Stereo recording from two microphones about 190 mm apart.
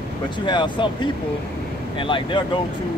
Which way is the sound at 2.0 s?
25° left (ahead or behind).